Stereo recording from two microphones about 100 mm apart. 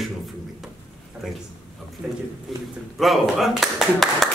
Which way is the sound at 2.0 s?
10° right (ahead or behind).